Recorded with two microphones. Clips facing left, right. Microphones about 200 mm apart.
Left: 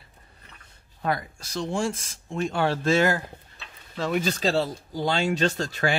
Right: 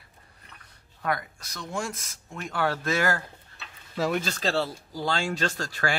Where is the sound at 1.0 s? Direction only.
30° left (ahead or behind).